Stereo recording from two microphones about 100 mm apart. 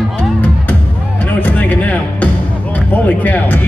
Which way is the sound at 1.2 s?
15° left (ahead or behind).